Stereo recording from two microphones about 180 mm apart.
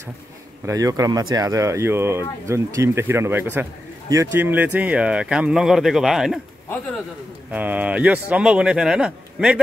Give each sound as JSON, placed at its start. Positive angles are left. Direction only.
{"t": 0.7, "sound": "speech", "side_deg": -20}
{"t": 7.5, "sound": "speech", "side_deg": -10}